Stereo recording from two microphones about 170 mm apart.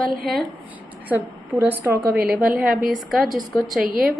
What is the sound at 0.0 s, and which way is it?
Speech, centre (ahead or behind).